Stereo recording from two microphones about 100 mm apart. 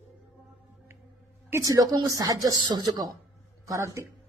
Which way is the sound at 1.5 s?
40° right (ahead or behind).